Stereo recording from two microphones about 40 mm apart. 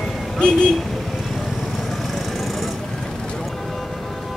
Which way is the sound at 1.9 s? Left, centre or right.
Centre.